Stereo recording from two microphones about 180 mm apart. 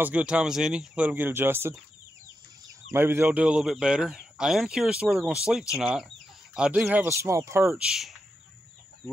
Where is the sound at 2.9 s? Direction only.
15° right (ahead or behind).